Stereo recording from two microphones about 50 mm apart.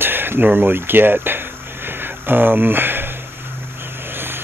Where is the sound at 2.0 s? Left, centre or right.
Right.